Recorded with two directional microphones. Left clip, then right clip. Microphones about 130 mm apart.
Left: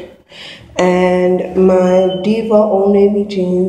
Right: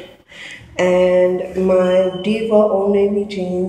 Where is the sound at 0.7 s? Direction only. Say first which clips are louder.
Left 1 dB; 50° left (ahead or behind).